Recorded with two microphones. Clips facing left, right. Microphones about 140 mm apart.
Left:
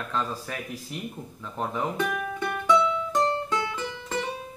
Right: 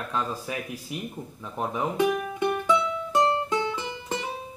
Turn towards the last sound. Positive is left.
turn(degrees=-15)  # may be behind; listen again after turning